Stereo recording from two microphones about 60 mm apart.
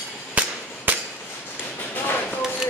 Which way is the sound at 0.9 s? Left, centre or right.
Right.